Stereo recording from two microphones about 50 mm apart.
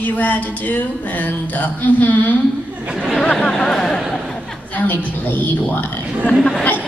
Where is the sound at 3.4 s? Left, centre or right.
Centre.